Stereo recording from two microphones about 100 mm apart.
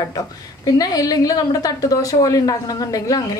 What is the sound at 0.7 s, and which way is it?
A woman's voice, 40° left (ahead or behind).